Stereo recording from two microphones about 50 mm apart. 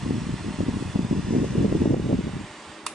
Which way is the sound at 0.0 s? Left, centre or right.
Centre.